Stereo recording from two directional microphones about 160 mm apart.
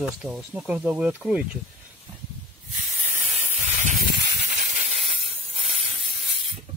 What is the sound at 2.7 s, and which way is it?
Hiss, 50° right (ahead or behind).